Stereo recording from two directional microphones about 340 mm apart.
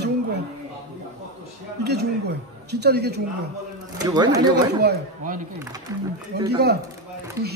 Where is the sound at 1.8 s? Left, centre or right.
Right.